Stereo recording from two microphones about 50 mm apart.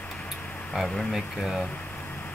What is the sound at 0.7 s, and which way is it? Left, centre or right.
Speech, centre.